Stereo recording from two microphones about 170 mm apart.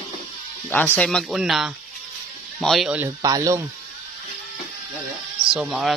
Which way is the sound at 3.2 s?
20° right (ahead or behind).